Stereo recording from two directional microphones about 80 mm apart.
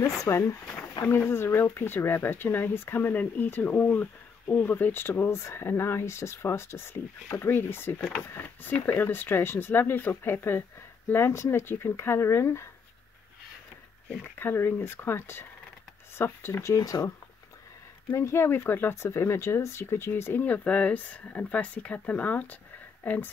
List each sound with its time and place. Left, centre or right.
0.0 s speech: left
14.4 s speech: left
18.1 s speech: left
20.4 s speech: centre